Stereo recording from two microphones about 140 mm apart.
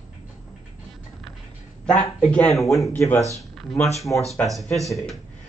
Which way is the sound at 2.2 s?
10° left (ahead or behind).